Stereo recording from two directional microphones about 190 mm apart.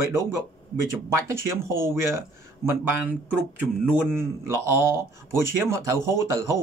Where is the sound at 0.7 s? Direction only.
15° right (ahead or behind).